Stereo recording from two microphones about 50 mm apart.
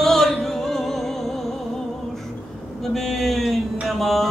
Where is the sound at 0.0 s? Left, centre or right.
Centre.